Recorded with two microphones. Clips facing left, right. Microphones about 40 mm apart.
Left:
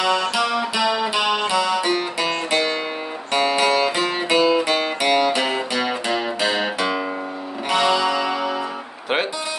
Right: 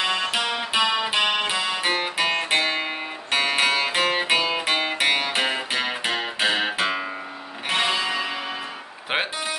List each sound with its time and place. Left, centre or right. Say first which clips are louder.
0.0 s music: left 4 dB; right